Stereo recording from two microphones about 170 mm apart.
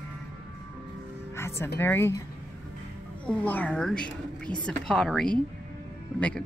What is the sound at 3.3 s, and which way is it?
Speech, 10° left (ahead or behind).